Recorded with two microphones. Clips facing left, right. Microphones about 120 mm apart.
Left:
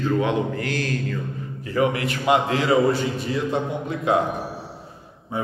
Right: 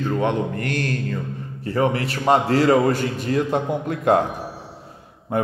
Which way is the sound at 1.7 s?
35° right (ahead or behind).